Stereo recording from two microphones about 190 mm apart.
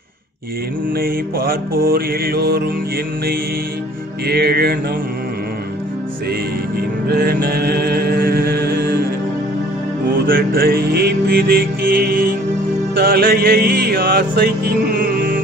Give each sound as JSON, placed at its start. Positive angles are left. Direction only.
{"t": 0.9, "sound": "music", "side_deg": -50}
{"t": 4.3, "sound": "music", "side_deg": -55}
{"t": 7.1, "sound": "music", "side_deg": -55}
{"t": 10.2, "sound": "music", "side_deg": -50}